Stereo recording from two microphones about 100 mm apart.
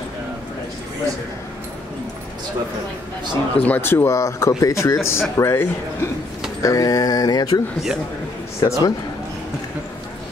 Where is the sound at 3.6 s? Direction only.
20° left (ahead or behind); by 7.6 s 40° left (ahead or behind).